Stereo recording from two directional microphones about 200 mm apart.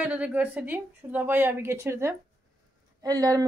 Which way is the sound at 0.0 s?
5° right (ahead or behind).